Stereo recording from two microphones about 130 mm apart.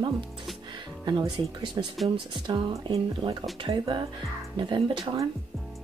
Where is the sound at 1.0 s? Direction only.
35° right (ahead or behind).